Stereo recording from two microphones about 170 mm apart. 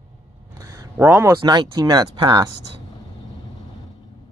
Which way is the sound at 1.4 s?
25° right (ahead or behind).